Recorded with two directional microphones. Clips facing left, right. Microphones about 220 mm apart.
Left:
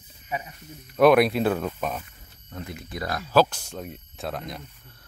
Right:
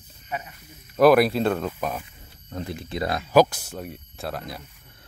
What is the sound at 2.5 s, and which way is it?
Speech, 35° right (ahead or behind).